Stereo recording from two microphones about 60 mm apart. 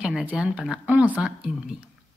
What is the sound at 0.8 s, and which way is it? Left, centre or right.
Speech, right.